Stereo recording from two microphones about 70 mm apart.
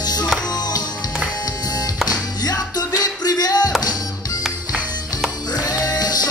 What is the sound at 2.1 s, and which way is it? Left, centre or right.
Music, left.